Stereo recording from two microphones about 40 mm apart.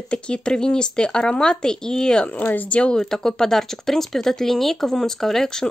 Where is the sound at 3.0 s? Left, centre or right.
Centre.